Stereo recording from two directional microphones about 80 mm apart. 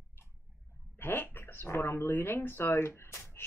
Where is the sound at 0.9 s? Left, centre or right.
Left.